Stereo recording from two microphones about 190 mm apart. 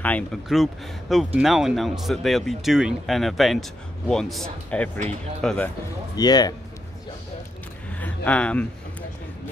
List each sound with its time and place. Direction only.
0.0 s speech: 5° left (ahead or behind)
6.1 s speech: 20° left (ahead or behind)
7.9 s a sound: 10° left (ahead or behind)